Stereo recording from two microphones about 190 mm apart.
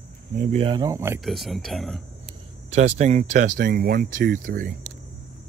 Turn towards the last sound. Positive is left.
turn(degrees=-45)  # may be behind; listen again after turning